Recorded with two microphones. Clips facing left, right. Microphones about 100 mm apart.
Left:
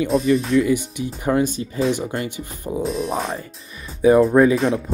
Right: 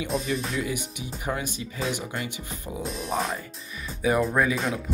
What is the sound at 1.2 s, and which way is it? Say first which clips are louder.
Speech: left 11 dB; 50° left (ahead or behind).